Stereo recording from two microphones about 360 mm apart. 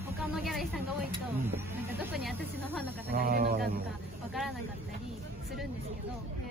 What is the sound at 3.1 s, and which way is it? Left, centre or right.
Speech, right.